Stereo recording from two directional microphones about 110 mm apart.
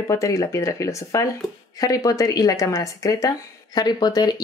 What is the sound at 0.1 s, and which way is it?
A woman's voice, 30° left (ahead or behind).